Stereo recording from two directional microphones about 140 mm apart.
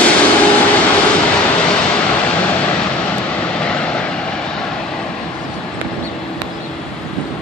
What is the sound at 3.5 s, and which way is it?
Vehicle, 5° left (ahead or behind).